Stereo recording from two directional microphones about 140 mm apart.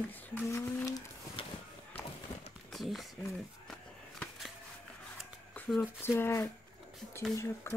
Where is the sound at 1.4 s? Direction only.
40° left (ahead or behind).